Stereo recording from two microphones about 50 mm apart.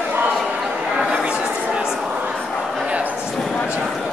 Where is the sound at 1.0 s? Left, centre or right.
Centre.